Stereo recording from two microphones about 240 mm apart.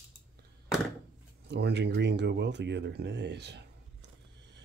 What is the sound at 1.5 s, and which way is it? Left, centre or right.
Speech, right.